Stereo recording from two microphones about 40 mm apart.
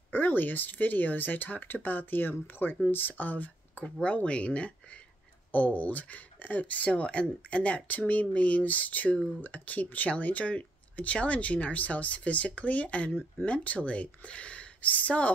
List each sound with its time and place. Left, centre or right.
0.1 s speech: left